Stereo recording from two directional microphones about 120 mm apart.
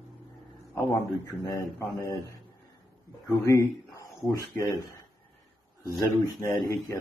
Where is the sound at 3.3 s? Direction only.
30° left (ahead or behind).